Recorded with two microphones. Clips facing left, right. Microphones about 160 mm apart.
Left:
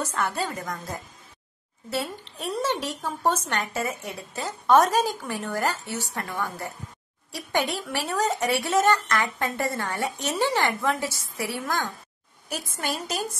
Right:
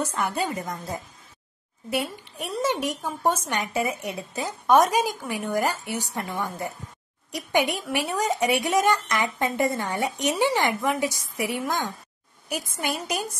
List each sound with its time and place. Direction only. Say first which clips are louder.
0.0 s a woman's voice: right 1 dB; 15° right (ahead or behind)